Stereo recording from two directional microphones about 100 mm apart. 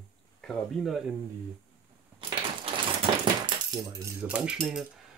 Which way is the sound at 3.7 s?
45° right (ahead or behind).